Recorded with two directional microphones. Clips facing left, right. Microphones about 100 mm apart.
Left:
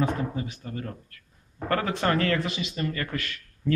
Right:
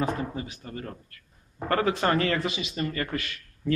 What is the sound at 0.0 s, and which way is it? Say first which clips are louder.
Speech: left 2 dB; 5° right (ahead or behind).